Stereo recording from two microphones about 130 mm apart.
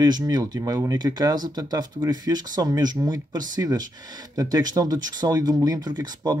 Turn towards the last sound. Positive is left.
turn(degrees=-30)  # may be behind; listen again after turning